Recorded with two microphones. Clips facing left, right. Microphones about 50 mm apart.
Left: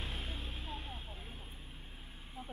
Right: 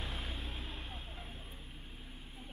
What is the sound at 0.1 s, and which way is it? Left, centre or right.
Vehicle, right.